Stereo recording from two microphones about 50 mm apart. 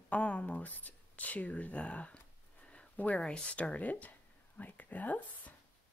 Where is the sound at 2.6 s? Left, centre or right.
Left.